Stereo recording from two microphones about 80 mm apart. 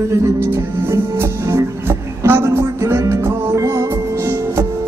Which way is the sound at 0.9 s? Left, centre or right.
Right.